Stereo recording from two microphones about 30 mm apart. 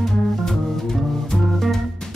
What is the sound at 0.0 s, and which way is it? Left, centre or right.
Music, centre.